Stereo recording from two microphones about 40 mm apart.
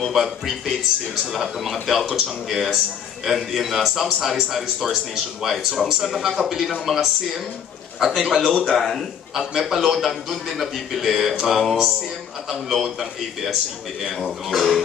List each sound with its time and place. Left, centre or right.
0.1 s a man's voice: centre
8.6 s a man's voice: centre
9.3 s a man's voice: centre